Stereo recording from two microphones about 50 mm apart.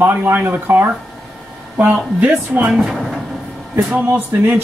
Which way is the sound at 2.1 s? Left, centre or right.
Right.